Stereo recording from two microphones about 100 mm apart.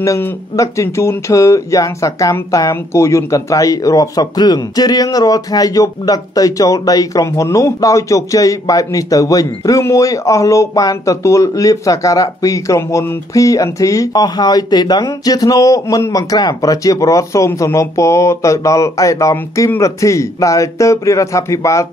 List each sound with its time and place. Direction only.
0.0 s speech: 30° left (ahead or behind)